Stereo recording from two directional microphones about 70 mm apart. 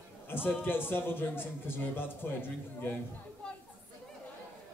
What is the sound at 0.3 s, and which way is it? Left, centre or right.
Female singing, left.